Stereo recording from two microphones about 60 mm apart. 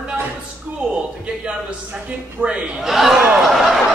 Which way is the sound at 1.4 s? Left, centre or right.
Centre.